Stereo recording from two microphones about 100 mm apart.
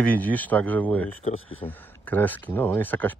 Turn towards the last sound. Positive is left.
turn(degrees=20)  # may be behind; listen again after turning